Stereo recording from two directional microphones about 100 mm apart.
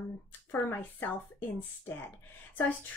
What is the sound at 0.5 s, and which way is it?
Speech, 20° left (ahead or behind).